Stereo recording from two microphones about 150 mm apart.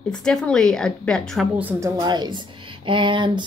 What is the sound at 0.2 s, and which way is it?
A woman's voice, 5° left (ahead or behind).